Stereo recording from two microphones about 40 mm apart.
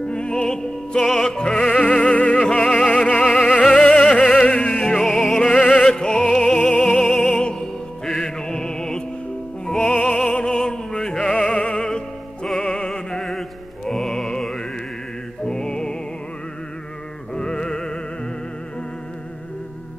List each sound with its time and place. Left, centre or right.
0.1 s music: left
1.8 s music: left
2.9 s opera: left
3.3 s opera: centre
3.7 s music: left
5.0 s music: centre
5.4 s opera: left
6.4 s opera: centre
7.2 s music: left
9.8 s music: left
10.3 s opera: centre
11.4 s music: left
17.4 s music: left